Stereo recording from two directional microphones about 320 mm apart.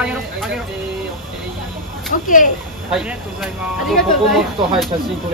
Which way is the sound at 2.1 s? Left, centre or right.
Left.